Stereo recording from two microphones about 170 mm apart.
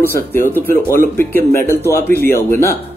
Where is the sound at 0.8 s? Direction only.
55° left (ahead or behind).